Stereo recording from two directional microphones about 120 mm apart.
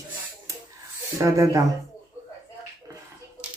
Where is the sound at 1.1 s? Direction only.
25° right (ahead or behind).